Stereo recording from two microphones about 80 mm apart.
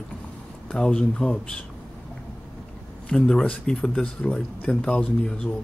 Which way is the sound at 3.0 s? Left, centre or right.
Centre.